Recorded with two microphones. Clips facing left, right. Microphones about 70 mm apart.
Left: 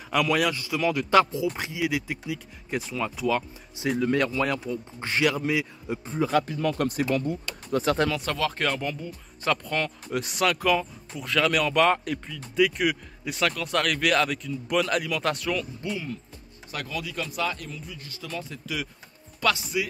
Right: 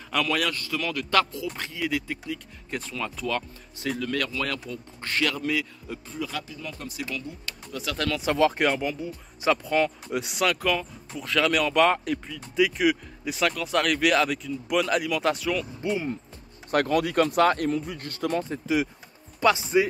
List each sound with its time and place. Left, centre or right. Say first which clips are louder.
0.1 s speech: left 2 dB; centre
4.0 s speech: left 6 dB; left
6.1 s speech: left 10 dB; left
7.0 s speech: left 9 dB; left
8.3 s speech: right 5 dB; centre
15.8 s speech: right 4 dB; right
16.7 s speech: right 11 dB; right
19.4 s speech: right 5 dB; right